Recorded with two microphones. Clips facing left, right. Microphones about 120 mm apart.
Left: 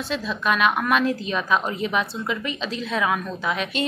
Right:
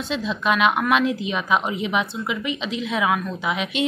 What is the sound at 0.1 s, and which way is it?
A woman's voice, 15° right (ahead or behind).